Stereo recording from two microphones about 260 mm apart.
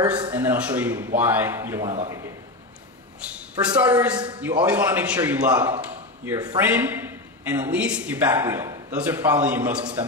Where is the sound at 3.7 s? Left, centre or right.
Centre.